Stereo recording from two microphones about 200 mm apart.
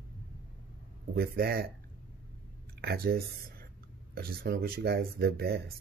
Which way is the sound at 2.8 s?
50° right (ahead or behind).